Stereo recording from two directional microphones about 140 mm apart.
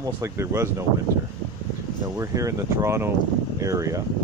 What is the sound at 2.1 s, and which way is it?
Speech, 20° right (ahead or behind).